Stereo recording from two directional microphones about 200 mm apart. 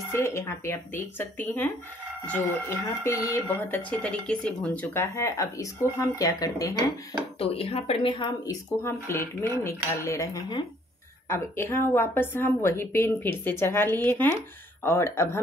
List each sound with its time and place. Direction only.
0.1 s a woman's voice: 10° left (ahead or behind)
3.0 s a woman's voice: 15° left (ahead or behind)